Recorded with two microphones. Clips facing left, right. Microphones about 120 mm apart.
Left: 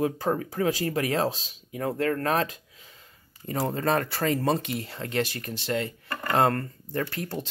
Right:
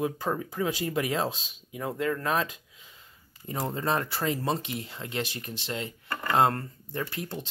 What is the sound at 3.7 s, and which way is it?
Speech, 60° left (ahead or behind).